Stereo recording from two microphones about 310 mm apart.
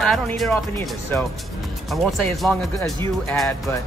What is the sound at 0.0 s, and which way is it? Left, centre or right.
Speech, centre.